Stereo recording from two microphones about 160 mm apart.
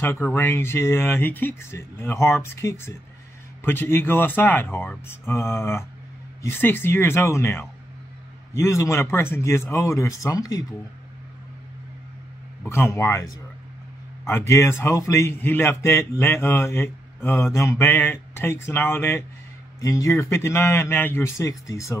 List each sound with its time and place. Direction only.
0.0 s a man's voice: 15° left (ahead or behind)
12.6 s a man's voice: 15° left (ahead or behind)